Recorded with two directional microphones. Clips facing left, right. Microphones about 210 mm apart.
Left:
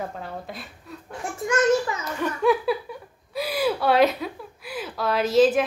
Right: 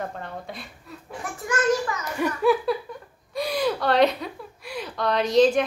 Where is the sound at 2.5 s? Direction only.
5° left (ahead or behind).